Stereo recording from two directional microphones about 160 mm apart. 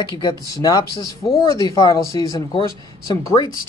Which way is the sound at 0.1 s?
25° left (ahead or behind).